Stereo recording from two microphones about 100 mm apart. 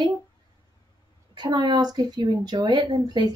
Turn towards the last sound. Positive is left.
turn(degrees=-45)  # may be behind; listen again after turning